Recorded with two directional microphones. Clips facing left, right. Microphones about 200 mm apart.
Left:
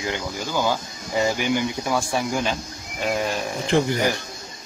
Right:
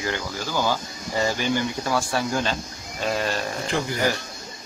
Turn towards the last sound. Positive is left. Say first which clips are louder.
# left 4 dB
turn(degrees=15)  # may be behind; listen again after turning